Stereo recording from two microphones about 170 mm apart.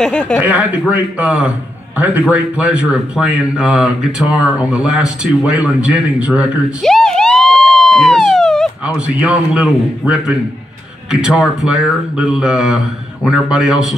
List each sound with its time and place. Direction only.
0.0 s speech: 10° left (ahead or behind)
0.4 s speech: 10° right (ahead or behind)